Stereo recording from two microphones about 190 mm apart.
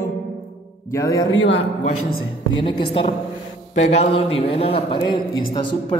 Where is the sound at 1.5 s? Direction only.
30° left (ahead or behind).